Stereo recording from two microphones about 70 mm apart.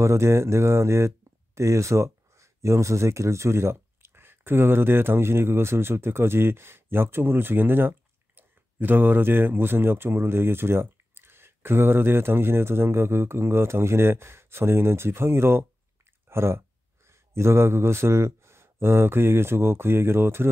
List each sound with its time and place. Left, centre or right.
0.0 s speech: right